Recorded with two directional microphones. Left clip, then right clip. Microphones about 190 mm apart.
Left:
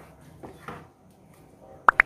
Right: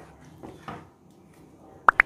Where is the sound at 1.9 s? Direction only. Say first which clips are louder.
Even; centre (ahead or behind).